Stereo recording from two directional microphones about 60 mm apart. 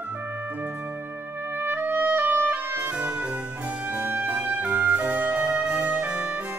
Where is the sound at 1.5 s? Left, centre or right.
Right.